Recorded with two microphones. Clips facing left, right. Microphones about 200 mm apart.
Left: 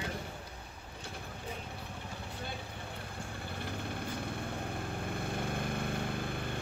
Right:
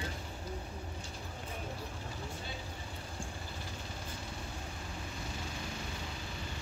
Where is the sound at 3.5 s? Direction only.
60° left (ahead or behind).